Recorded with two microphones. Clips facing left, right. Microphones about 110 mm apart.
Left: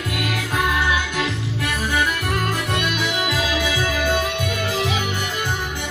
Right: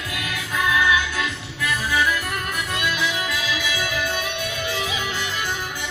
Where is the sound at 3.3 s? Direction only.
45° left (ahead or behind).